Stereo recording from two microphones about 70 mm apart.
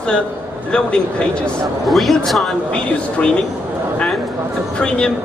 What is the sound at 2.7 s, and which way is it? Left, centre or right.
Speech, centre.